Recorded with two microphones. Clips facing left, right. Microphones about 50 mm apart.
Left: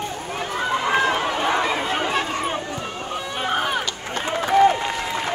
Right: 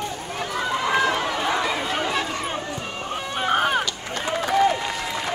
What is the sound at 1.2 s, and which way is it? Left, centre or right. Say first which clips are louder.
Chatter: left 2 dB; left.